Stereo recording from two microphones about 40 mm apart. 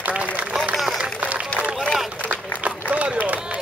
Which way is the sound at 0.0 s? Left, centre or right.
Right.